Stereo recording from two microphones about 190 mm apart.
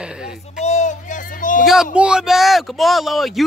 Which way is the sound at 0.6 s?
35° left (ahead or behind).